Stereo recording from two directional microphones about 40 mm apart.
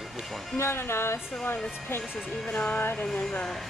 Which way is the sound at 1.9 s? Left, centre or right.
Left.